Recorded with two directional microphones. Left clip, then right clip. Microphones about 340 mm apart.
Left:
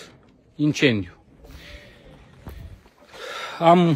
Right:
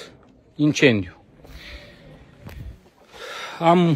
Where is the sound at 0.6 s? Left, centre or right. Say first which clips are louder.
Right 3 dB; centre.